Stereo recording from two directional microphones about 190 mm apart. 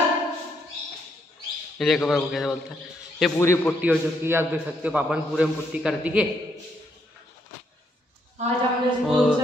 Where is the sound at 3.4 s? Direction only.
15° left (ahead or behind).